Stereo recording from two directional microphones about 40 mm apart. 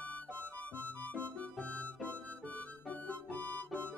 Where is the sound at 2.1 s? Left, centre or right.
Left.